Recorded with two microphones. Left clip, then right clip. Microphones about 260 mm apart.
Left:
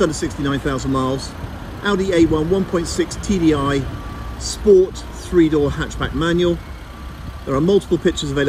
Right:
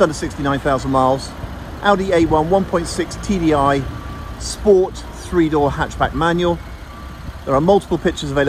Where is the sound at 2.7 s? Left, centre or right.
Centre.